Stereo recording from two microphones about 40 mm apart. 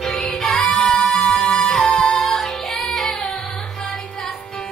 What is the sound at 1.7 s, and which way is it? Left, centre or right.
Music, left.